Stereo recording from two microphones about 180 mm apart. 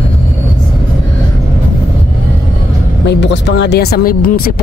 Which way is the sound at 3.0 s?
75° left (ahead or behind).